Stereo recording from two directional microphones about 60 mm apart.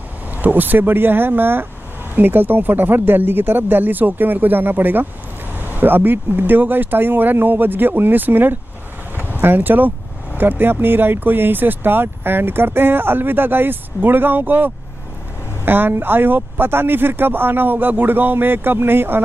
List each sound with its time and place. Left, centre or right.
0.4 s speech: right